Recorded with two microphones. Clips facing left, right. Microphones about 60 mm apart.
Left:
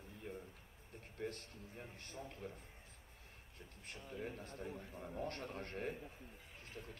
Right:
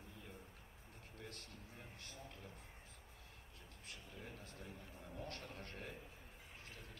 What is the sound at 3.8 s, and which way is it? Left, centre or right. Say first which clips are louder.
A man's voice: left 8 dB; left.